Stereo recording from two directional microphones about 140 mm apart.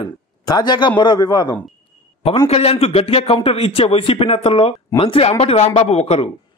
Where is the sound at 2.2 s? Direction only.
40° left (ahead or behind).